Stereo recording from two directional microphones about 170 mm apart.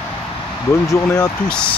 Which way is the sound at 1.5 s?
5° left (ahead or behind).